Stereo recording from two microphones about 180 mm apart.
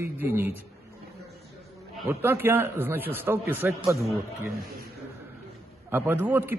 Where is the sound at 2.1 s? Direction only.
15° right (ahead or behind).